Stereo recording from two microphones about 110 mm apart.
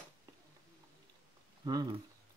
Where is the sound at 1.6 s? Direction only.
40° right (ahead or behind).